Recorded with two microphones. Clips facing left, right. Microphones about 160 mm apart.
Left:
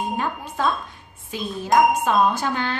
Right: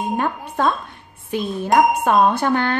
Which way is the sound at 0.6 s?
55° right (ahead or behind).